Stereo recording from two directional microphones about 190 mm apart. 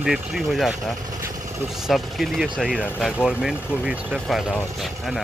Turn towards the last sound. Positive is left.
turn(degrees=0)  # may be behind; listen again after turning